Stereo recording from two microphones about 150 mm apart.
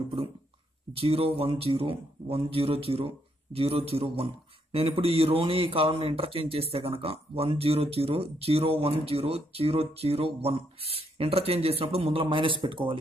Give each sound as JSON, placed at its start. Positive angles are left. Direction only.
{"t": 0.9, "sound": "a man's voice", "side_deg": -40}